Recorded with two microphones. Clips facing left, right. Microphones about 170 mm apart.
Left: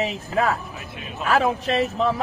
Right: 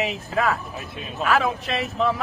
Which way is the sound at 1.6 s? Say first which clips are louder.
Left 2 dB; 35° left (ahead or behind).